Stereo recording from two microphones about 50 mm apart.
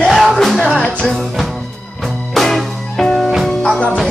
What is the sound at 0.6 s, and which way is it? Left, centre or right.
Music, left.